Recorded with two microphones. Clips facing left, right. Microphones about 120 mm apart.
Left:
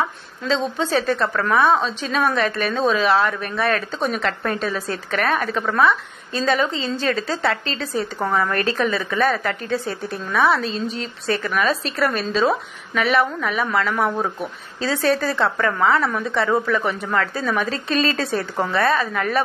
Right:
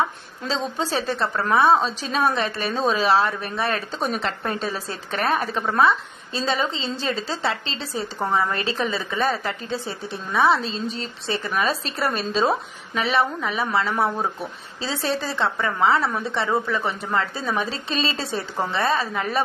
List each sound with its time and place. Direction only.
0.7 s a woman's voice: 35° right (ahead or behind)